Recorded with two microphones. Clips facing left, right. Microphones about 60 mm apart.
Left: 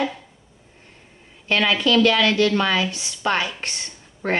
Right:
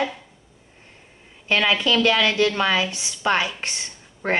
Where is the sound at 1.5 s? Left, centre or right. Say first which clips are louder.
Left 1 dB; centre.